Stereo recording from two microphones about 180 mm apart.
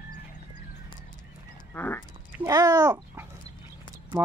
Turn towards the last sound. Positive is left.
turn(degrees=-10)  # may be behind; listen again after turning